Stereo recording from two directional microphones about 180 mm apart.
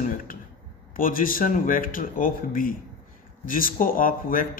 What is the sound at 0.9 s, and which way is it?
A man's voice, 50° left (ahead or behind).